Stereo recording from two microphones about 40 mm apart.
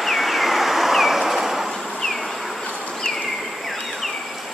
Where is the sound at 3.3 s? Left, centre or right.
Centre.